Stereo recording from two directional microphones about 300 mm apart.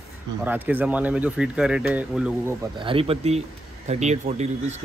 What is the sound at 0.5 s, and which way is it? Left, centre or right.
Speech, centre.